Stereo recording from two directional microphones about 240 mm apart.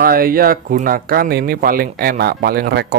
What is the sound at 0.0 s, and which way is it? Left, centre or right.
Speech, right.